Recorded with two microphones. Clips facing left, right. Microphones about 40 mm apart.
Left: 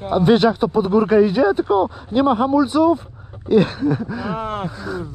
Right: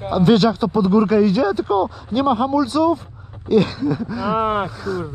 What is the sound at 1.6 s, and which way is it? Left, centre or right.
Speech, centre.